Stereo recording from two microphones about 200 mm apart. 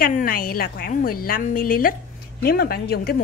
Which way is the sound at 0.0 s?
45° left (ahead or behind).